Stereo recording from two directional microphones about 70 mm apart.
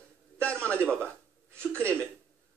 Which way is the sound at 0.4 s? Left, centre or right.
Centre.